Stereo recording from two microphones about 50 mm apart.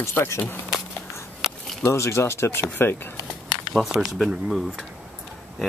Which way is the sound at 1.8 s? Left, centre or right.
Left.